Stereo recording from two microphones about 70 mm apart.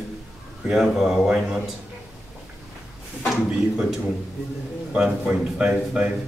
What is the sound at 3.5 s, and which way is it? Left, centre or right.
A man's voice, centre.